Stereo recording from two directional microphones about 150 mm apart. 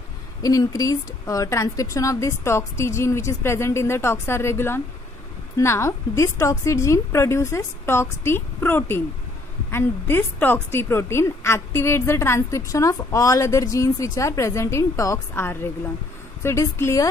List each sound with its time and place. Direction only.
0.4 s a woman's voice: 25° left (ahead or behind)